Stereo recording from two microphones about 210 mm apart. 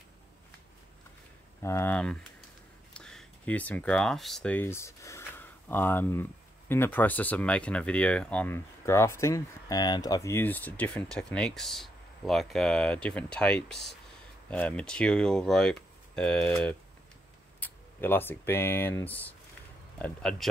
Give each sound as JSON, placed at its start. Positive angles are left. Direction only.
{"t": 1.6, "sound": "speech", "side_deg": 10}